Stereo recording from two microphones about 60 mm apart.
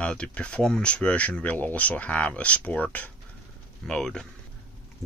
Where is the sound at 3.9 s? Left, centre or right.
Centre.